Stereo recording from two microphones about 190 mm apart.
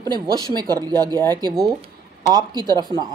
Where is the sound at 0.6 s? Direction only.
20° right (ahead or behind).